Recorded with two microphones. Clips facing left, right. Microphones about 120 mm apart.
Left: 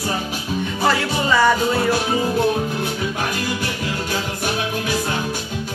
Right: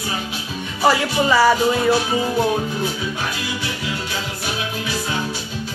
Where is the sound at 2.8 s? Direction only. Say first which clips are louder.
Left 1 dB; 50° left (ahead or behind).